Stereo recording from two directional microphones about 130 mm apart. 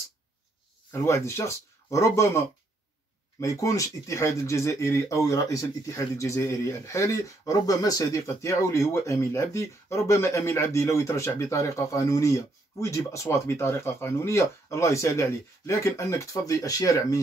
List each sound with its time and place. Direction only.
1.0 s speech: 20° left (ahead or behind)